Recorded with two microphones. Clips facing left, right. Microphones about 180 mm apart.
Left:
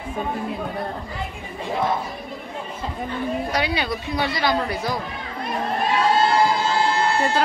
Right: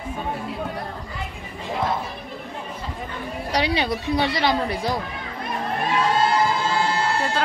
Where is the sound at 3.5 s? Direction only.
30° right (ahead or behind).